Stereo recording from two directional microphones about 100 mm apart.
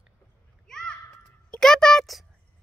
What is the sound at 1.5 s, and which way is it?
Speech, 5° left (ahead or behind).